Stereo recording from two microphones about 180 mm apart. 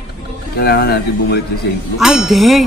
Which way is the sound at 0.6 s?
60° left (ahead or behind).